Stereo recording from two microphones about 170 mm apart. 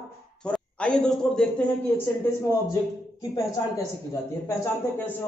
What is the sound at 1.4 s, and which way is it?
Speech, 5° left (ahead or behind).